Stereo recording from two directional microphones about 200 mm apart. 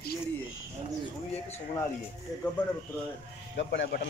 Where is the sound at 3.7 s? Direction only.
55° left (ahead or behind).